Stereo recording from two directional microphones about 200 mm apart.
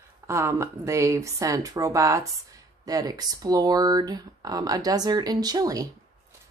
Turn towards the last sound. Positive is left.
turn(degrees=-20)  # may be behind; listen again after turning